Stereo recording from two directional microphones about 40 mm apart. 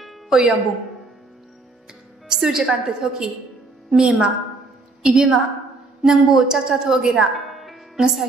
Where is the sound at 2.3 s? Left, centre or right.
Centre.